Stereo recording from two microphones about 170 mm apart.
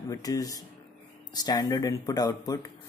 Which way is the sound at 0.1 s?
20° left (ahead or behind).